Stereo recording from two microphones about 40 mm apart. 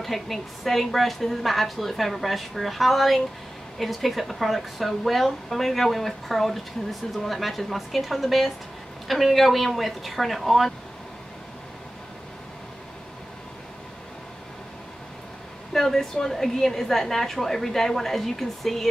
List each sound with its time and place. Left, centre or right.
0.0 s speech: centre
15.7 s a woman's voice: centre